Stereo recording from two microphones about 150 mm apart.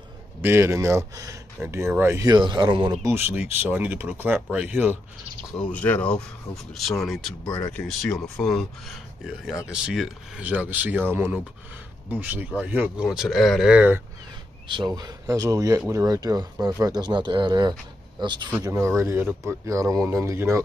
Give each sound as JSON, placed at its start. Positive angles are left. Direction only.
{"t": 0.4, "sound": "speech", "side_deg": -15}
{"t": 3.0, "sound": "speech", "side_deg": -15}
{"t": 5.5, "sound": "speech", "side_deg": 10}
{"t": 7.4, "sound": "speech", "side_deg": 25}
{"t": 7.7, "sound": "speech", "side_deg": 5}
{"t": 14.7, "sound": "speech", "side_deg": -30}
{"t": 18.6, "sound": "speech", "side_deg": -20}